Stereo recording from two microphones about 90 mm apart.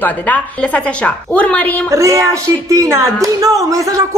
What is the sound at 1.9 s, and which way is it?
Speech, 35° right (ahead or behind).